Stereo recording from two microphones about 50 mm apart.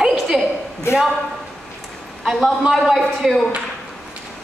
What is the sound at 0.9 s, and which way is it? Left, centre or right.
Speech, left.